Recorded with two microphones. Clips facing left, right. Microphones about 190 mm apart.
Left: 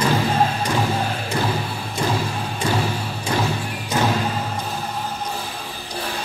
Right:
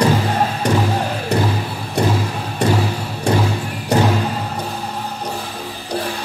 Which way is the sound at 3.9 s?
65° right (ahead or behind).